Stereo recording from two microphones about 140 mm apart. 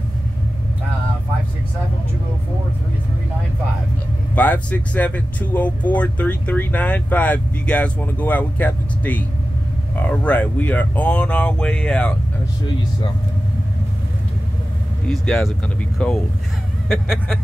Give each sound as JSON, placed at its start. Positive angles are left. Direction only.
{"t": 4.4, "sound": "speech", "side_deg": 10}
{"t": 15.0, "sound": "speech", "side_deg": 5}